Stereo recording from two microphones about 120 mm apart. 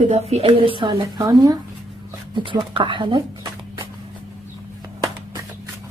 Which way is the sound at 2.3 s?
45° right (ahead or behind).